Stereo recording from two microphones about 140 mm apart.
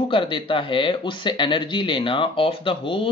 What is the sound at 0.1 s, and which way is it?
Speech, 40° left (ahead or behind).